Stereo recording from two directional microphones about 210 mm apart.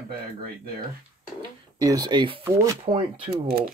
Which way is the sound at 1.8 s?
15° right (ahead or behind).